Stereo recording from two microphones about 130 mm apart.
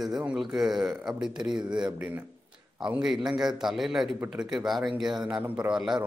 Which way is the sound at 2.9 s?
5° right (ahead or behind).